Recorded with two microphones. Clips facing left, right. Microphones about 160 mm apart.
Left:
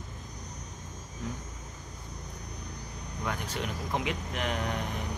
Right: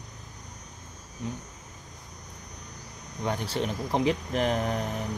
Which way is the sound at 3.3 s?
30° right (ahead or behind).